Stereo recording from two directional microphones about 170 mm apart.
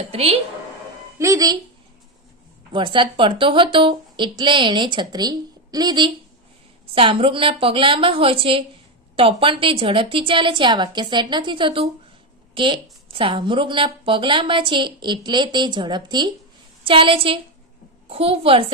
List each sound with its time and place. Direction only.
0.0 s a woman's voice: 35° right (ahead or behind)
1.1 s a woman's voice: 20° right (ahead or behind)
2.7 s a woman's voice: 30° right (ahead or behind)